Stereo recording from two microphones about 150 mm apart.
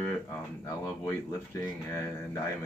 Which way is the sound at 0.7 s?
20° left (ahead or behind).